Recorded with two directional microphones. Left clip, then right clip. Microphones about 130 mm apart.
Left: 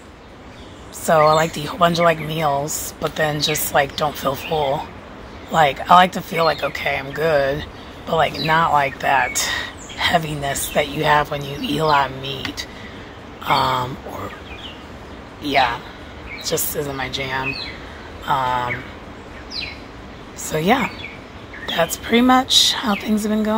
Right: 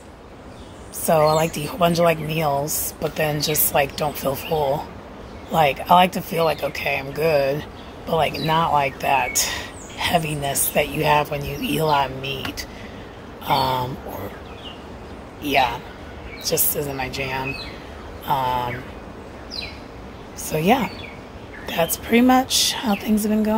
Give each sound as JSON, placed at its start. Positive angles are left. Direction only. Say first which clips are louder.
{"t": 1.0, "sound": "a woman's voice", "louder": "left 3 dB", "side_deg": -20}
{"t": 15.4, "sound": "a woman's voice", "louder": "left 2 dB", "side_deg": -15}
{"t": 20.4, "sound": "a woman's voice", "louder": "left 1 dB", "side_deg": -20}